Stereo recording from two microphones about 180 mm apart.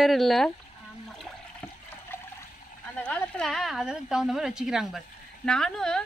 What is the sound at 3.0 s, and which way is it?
Speech, 5° left (ahead or behind).